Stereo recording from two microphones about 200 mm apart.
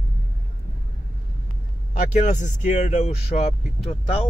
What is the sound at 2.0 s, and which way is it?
Speech, 35° left (ahead or behind).